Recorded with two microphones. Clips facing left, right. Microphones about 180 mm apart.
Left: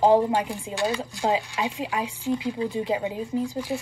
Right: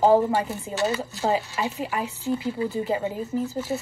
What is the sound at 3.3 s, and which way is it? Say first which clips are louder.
Speech: left 1 dB; 5° right (ahead or behind).